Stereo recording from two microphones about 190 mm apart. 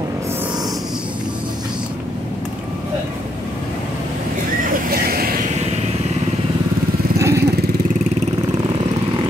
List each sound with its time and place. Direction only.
4.9 s vehicle: 50° right (ahead or behind)
7.2 s lawn mower: 15° right (ahead or behind)